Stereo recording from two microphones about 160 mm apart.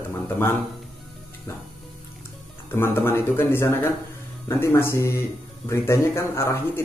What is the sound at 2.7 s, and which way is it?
Speech, 15° left (ahead or behind).